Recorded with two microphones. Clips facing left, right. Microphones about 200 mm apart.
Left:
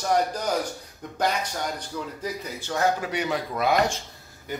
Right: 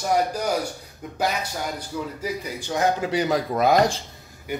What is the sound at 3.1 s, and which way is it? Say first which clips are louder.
Speech: right 5 dB; 35° right (ahead or behind).